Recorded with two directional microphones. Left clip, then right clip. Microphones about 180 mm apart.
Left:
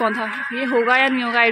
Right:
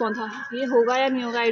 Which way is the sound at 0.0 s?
20° left (ahead or behind).